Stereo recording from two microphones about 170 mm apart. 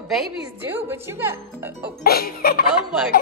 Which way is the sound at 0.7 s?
15° right (ahead or behind).